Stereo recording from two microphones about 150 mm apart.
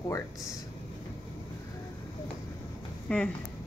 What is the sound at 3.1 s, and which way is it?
Speech, 5° left (ahead or behind).